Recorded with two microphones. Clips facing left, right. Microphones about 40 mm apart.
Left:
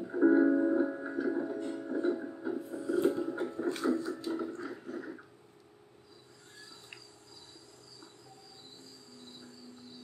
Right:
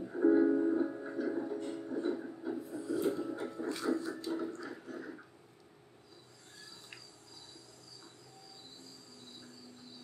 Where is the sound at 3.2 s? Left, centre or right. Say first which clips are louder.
Left 4 dB; centre.